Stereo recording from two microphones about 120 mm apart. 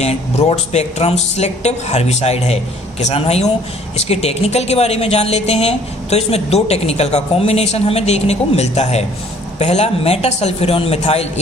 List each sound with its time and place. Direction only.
0.0 s a woman's voice: 60° left (ahead or behind)